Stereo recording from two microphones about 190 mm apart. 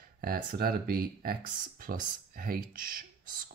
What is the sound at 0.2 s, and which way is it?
Speech, 50° right (ahead or behind).